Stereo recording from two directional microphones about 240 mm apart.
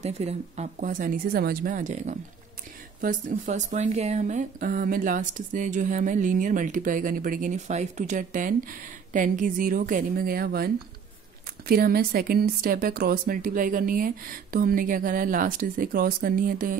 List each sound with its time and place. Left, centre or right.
0.0 s speech: right